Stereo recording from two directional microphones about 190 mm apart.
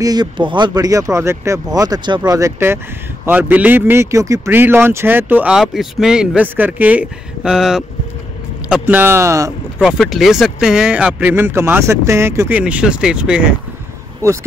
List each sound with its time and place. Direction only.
0.0 s speech: 20° right (ahead or behind)
9.8 s speech: centre (ahead or behind)
14.2 s speech: 15° right (ahead or behind)